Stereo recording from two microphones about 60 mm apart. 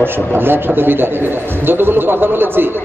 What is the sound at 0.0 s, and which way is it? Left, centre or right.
A man's voice, right.